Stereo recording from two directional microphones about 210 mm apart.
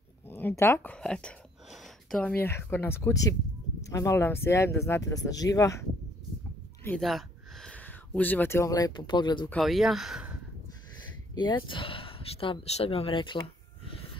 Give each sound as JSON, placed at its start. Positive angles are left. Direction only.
{"t": 0.3, "sound": "speech", "side_deg": 10}
{"t": 6.8, "sound": "speech", "side_deg": 5}
{"t": 9.5, "sound": "speech", "side_deg": 0}
{"t": 11.3, "sound": "speech", "side_deg": 20}